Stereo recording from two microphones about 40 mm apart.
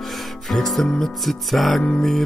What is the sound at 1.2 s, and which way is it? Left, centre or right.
Music, centre.